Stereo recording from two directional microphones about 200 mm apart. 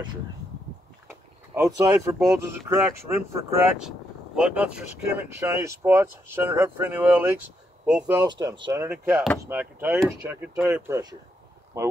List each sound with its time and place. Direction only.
1.5 s speech: 15° right (ahead or behind)
4.4 s speech: 5° right (ahead or behind)